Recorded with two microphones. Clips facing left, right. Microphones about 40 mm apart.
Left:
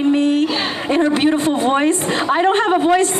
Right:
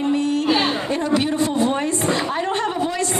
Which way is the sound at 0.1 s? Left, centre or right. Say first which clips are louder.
Left 5 dB; left.